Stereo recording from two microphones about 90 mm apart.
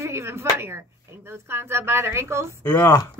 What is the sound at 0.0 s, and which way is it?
A woman's voice, 30° right (ahead or behind).